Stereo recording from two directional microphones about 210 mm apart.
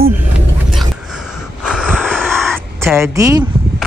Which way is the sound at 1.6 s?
Centre (ahead or behind).